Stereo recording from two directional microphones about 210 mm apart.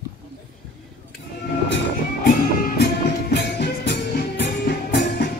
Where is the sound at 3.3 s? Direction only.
50° left (ahead or behind).